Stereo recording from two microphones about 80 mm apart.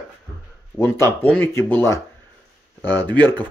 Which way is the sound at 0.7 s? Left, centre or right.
Left.